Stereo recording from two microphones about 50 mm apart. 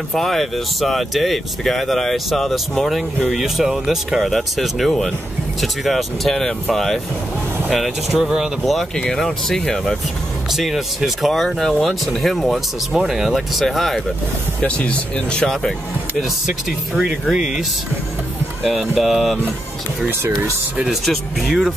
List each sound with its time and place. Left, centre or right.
0.1 s speech: centre
9.1 s speech: centre
10.5 s speech: centre
14.6 s speech: left
16.2 s speech: centre
20.9 s speech: centre